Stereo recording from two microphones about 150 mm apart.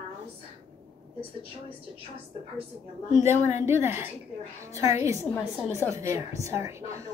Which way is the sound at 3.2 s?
15° right (ahead or behind).